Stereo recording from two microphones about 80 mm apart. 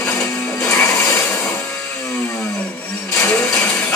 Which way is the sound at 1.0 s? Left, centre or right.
Left.